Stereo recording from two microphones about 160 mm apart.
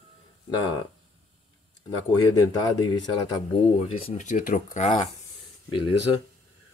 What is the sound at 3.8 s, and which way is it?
Speech, 35° left (ahead or behind).